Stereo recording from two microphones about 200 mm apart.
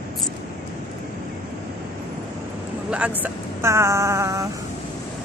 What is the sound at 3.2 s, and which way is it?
Vehicle, 15° right (ahead or behind).